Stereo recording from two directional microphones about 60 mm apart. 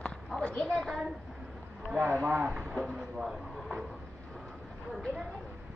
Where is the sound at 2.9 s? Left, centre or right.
Centre.